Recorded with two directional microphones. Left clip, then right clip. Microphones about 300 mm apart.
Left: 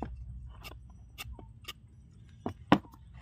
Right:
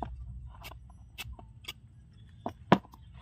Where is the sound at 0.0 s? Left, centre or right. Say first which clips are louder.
Right 2 dB; centre.